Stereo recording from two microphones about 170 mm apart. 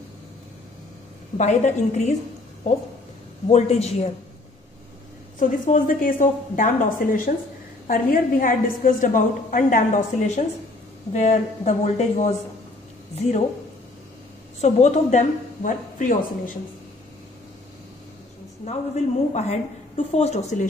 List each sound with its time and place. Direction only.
1.4 s a woman's voice: 45° left (ahead or behind)
3.4 s speech: 40° left (ahead or behind)
5.4 s a woman's voice: 50° left (ahead or behind)
14.6 s a woman's voice: 40° left (ahead or behind)
18.7 s speech: 40° left (ahead or behind)